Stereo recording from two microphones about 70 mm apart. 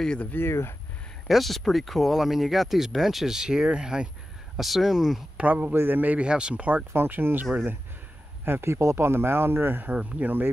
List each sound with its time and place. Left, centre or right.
0.2 s speech: left
1.2 s speech: centre
5.4 s speech: right
8.5 s speech: right